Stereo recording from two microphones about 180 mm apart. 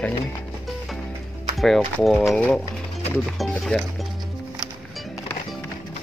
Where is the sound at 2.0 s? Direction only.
Centre (ahead or behind).